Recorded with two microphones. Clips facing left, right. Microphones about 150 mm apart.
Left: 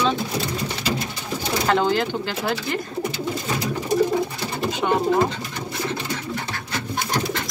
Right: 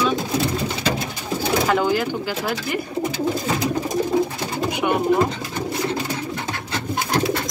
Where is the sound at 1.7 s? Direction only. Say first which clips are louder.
Even; 10° right (ahead or behind).